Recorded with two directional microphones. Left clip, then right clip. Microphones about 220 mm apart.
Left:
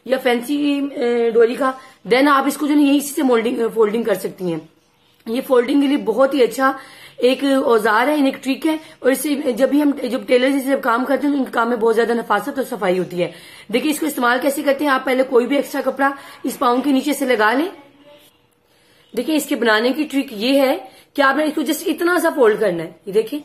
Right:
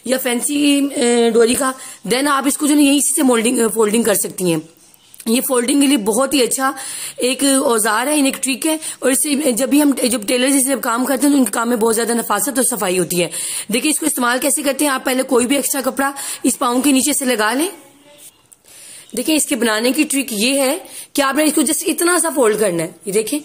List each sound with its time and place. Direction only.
0.0 s speech: 35° right (ahead or behind)
19.1 s speech: 35° right (ahead or behind)